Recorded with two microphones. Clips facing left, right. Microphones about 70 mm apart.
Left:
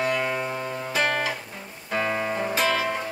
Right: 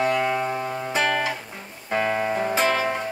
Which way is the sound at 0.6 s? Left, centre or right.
Centre.